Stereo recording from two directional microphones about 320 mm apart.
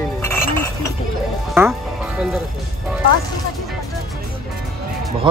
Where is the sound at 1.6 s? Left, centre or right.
Centre.